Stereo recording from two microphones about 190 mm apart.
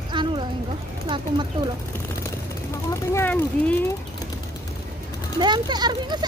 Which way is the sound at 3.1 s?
10° left (ahead or behind).